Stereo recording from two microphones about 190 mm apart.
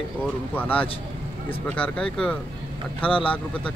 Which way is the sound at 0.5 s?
10° left (ahead or behind).